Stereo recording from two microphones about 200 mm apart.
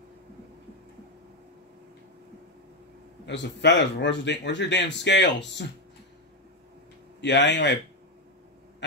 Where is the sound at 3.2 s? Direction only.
60° left (ahead or behind).